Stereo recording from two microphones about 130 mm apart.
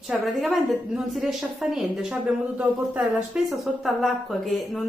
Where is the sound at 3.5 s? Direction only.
Centre (ahead or behind).